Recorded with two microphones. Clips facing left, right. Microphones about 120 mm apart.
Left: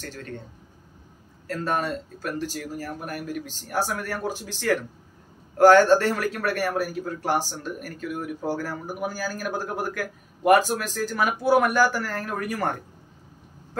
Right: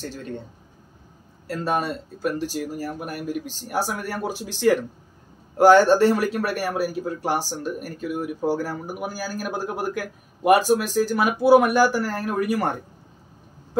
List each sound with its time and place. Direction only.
0.0 s speech: 15° right (ahead or behind)
1.5 s speech: 10° right (ahead or behind)